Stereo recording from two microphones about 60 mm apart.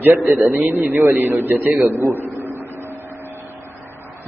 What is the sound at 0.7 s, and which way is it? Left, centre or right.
Speech, right.